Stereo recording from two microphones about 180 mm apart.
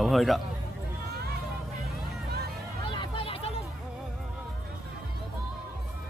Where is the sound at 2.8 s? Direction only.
25° left (ahead or behind).